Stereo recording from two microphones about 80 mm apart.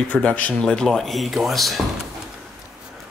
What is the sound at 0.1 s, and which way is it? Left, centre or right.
Speech, centre.